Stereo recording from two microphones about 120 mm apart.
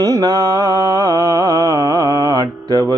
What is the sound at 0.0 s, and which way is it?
Mantra, 30° right (ahead or behind).